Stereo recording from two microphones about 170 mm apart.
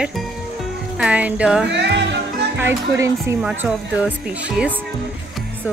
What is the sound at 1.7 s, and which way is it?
Music, 90° right.